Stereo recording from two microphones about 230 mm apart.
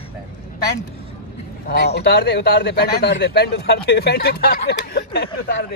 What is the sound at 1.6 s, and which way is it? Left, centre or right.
A man's voice, left.